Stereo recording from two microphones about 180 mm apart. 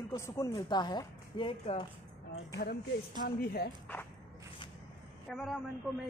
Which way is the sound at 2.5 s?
60° left (ahead or behind).